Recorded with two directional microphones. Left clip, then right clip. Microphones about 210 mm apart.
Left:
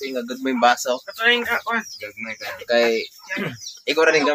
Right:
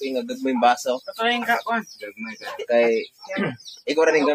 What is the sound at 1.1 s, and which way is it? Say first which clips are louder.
Speech: left 3 dB; 60° right (ahead or behind).